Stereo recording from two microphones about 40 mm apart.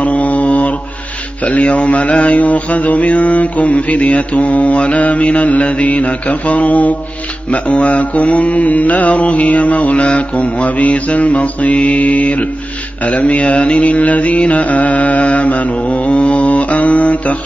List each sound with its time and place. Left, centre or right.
0.0 s mantra: left